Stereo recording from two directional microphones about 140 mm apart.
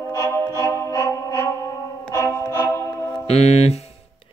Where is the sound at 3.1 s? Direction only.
50° left (ahead or behind).